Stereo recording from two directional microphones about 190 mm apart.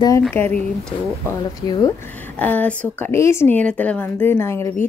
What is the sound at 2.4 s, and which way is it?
Speech, 10° left (ahead or behind).